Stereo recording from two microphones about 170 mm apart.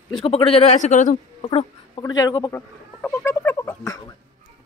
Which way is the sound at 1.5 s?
30° left (ahead or behind).